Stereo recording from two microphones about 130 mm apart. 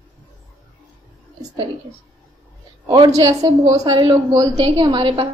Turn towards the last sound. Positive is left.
turn(degrees=-35)  # may be behind; listen again after turning